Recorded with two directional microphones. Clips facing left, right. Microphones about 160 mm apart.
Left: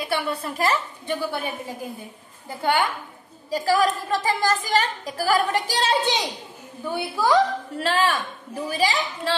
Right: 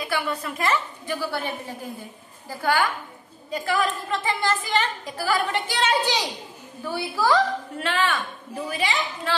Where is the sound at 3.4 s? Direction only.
35° left (ahead or behind).